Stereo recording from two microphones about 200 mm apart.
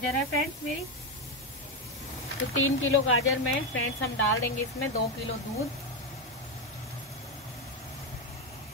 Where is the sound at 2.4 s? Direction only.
85° left.